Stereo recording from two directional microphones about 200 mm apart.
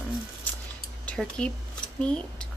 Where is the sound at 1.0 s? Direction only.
5° left (ahead or behind).